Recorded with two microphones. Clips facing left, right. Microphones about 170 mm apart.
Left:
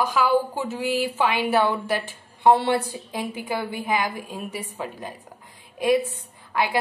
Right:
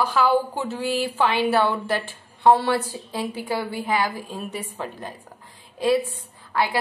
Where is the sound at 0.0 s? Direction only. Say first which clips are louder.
Right 1 dB; 15° left (ahead or behind).